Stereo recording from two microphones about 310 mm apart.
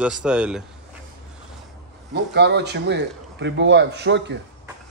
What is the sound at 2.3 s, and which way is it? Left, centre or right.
Speech, right.